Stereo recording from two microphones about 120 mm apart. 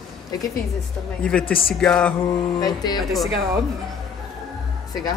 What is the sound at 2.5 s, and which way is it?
Speech, 35° left (ahead or behind).